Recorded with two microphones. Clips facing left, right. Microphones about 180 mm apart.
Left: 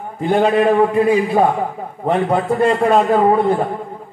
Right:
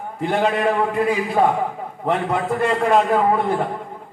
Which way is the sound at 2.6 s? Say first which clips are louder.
Left 3 dB; 30° left (ahead or behind).